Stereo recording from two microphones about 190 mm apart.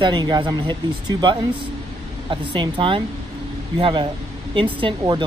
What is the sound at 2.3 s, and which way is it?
Speech, 25° right (ahead or behind).